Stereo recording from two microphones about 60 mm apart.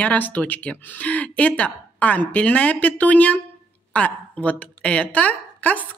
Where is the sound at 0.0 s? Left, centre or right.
Left.